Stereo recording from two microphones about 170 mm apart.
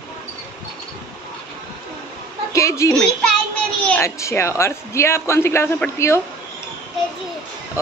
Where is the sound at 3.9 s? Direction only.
15° left (ahead or behind).